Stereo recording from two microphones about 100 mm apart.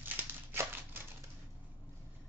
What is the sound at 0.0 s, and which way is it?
Crumpling, 20° right (ahead or behind).